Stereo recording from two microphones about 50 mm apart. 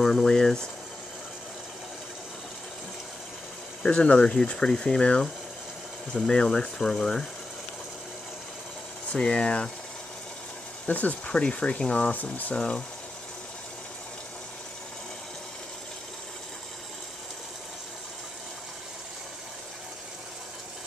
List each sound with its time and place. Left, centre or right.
0.0 s speech: centre
3.8 s speech: centre
9.1 s speech: left
10.9 s speech: left
12.1 s speech: left
12.5 s speech: centre